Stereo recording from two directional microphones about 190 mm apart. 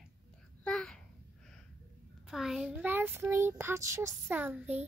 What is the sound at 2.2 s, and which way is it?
Child singing, centre (ahead or behind).